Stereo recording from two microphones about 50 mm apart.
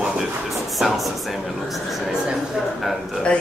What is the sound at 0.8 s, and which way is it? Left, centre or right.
Speech, centre.